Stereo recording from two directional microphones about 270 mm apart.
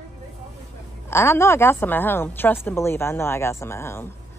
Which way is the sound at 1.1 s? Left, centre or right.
Centre.